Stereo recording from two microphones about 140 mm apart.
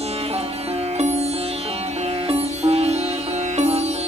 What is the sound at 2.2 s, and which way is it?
Music, 45° right (ahead or behind).